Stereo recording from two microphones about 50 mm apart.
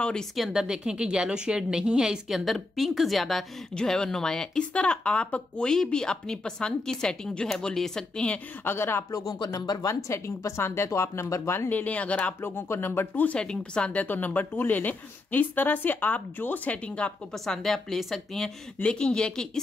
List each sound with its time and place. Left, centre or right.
0.0 s speech: centre
0.5 s speech: centre
3.7 s speech: centre
8.6 s speech: left
9.8 s speech: left
11.7 s speech: left
12.4 s speech: left
13.1 s a woman's voice: left
13.4 s speech: centre
14.0 s a woman's voice: left
17.3 s speech: centre
18.8 s speech: centre